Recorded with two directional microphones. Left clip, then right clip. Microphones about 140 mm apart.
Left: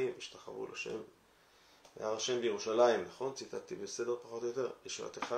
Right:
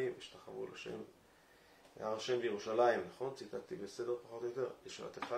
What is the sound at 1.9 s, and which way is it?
Speech, 20° left (ahead or behind).